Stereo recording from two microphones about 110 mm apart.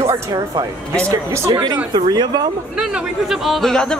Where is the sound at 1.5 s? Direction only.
40° right (ahead or behind).